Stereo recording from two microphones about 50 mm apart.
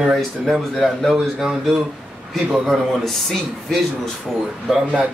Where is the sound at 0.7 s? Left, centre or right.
Centre.